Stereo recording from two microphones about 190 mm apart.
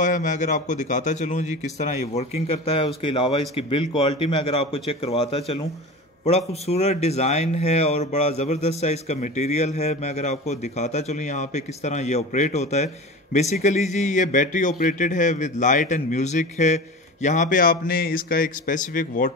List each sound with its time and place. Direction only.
0.0 s a man's voice: 40° left (ahead or behind)